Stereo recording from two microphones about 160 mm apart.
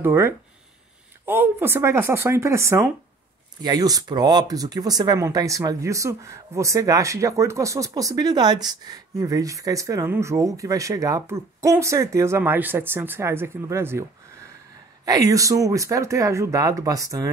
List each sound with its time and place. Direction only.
0.0 s speech: 15° right (ahead or behind)
15.0 s speech: 20° right (ahead or behind)